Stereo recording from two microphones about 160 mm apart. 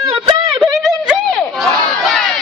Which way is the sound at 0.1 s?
30° right (ahead or behind).